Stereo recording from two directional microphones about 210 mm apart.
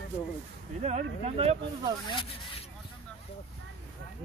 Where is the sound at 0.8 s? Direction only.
30° right (ahead or behind).